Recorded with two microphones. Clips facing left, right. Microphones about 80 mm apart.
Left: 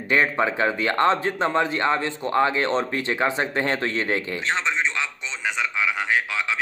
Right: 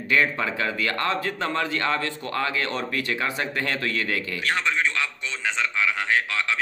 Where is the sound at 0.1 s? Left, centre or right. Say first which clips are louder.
Left 2 dB; left.